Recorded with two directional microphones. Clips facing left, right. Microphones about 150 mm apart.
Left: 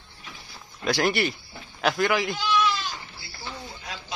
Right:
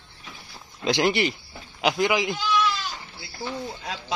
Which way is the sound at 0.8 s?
20° right (ahead or behind).